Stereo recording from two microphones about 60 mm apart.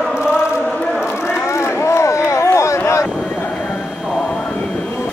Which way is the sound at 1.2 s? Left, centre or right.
Left.